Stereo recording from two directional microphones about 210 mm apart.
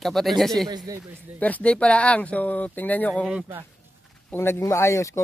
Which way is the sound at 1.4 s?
5° left (ahead or behind).